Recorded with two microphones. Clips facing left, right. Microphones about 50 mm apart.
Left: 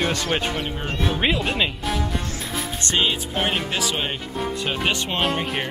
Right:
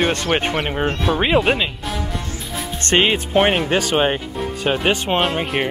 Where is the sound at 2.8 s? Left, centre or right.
Right.